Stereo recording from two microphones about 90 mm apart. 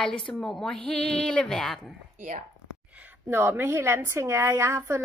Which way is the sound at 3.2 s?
25° right (ahead or behind).